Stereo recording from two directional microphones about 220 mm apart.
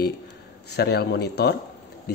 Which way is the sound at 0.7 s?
50° left (ahead or behind).